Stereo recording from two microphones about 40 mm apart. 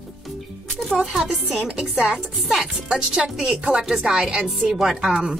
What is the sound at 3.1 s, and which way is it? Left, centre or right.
Speech, centre.